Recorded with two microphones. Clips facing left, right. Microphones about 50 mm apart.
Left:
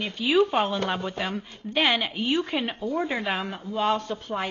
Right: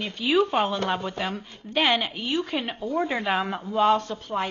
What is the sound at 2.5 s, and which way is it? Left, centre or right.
A woman's voice, centre.